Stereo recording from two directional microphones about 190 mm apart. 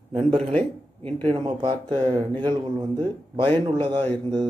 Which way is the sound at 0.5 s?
5° left (ahead or behind).